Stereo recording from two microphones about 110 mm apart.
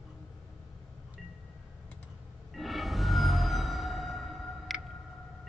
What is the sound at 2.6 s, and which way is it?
Music, centre (ahead or behind).